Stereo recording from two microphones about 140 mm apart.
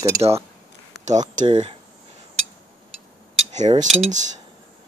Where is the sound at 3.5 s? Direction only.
55° right (ahead or behind).